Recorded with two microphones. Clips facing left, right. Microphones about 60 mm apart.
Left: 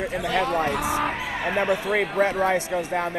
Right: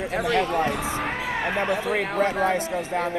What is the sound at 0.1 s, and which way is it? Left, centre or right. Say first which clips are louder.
Speech: right 2 dB; right.